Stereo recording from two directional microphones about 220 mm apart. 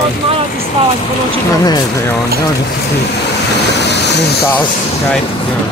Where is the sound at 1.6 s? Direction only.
15° left (ahead or behind).